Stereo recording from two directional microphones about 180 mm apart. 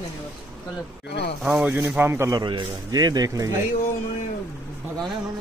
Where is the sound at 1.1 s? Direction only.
65° left (ahead or behind).